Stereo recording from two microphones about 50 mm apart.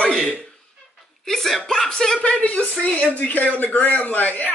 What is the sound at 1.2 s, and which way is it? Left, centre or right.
Speech, centre.